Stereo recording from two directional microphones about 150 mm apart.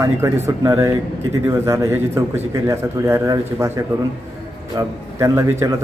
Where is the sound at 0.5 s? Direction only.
20° right (ahead or behind).